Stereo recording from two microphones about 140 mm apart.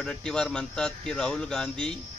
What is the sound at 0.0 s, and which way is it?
Speech, 5° left (ahead or behind).